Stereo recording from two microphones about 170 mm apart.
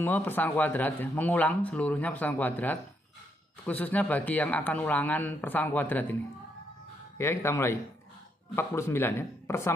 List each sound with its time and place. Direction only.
0.0 s speech: 10° left (ahead or behind)
7.2 s speech: 15° left (ahead or behind)